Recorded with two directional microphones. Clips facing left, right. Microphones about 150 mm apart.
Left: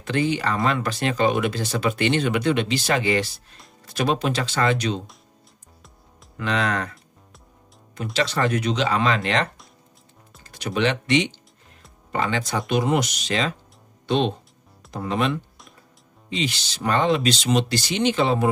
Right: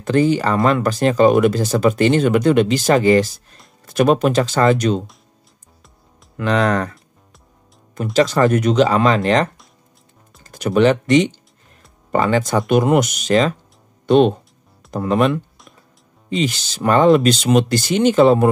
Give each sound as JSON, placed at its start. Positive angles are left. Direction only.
{"t": 0.0, "sound": "speech", "side_deg": -40}
{"t": 6.3, "sound": "speech", "side_deg": -45}
{"t": 7.9, "sound": "speech", "side_deg": -45}